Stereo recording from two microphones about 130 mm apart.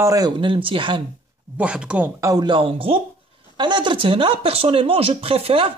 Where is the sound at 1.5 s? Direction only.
10° right (ahead or behind).